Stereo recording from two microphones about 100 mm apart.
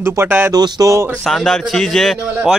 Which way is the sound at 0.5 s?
40° right (ahead or behind).